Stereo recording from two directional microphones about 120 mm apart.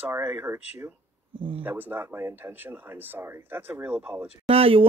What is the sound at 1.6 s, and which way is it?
Speech, 15° right (ahead or behind).